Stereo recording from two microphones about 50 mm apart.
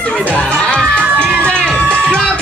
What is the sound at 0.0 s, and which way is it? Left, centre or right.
Music, left.